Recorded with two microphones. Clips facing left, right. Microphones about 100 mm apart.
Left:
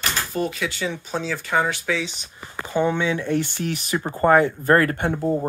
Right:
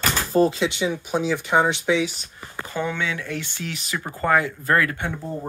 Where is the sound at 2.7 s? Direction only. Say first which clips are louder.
Left 5 dB; 25° left (ahead or behind); by 5.2 s 45° left (ahead or behind).